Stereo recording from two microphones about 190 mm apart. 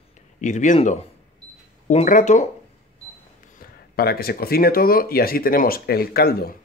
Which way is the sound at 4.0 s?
55° left (ahead or behind).